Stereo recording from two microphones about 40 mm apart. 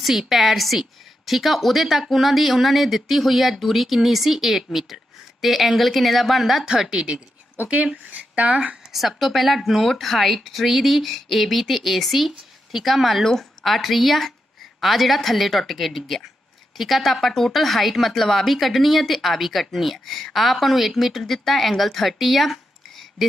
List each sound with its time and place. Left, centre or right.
0.0 s speech: centre
6.9 s a woman's voice: right
8.9 s speech: centre
13.3 s a sound: centre
13.7 s speech: centre